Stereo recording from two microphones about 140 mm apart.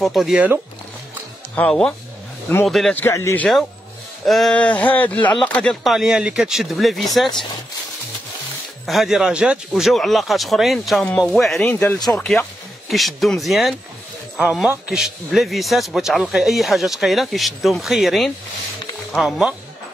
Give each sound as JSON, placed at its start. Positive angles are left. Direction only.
{"t": 0.0, "sound": "a man's voice", "side_deg": 0}
{"t": 1.5, "sound": "a man's voice", "side_deg": 5}
{"t": 3.0, "sound": "a man's voice", "side_deg": 20}
{"t": 4.3, "sound": "a man's voice", "side_deg": 5}
{"t": 8.8, "sound": "a man's voice", "side_deg": 0}
{"t": 11.7, "sound": "a man's voice", "side_deg": 15}